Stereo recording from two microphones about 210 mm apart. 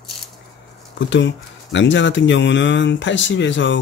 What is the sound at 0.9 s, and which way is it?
Speech, 60° left (ahead or behind).